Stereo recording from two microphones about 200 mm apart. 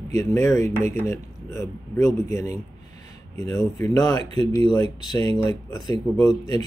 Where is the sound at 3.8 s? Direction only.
15° left (ahead or behind).